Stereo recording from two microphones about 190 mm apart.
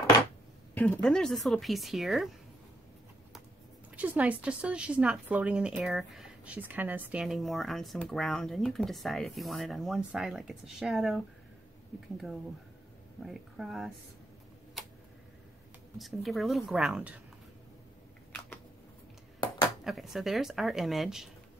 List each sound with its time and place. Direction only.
0.7 s a woman's voice: 5° left (ahead or behind)
3.9 s a woman's voice: 5° right (ahead or behind)
13.2 s a woman's voice: centre (ahead or behind)
16.0 s a woman's voice: centre (ahead or behind)
19.8 s a woman's voice: centre (ahead or behind)